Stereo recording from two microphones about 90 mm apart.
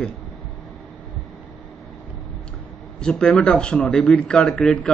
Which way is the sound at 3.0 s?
10° left (ahead or behind).